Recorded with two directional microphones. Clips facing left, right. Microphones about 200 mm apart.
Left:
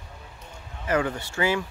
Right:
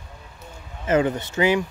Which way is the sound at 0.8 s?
20° right (ahead or behind).